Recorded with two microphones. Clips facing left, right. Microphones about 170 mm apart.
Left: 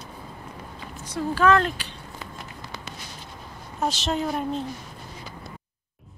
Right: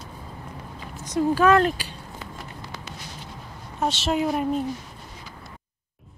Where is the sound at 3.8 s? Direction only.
Centre (ahead or behind).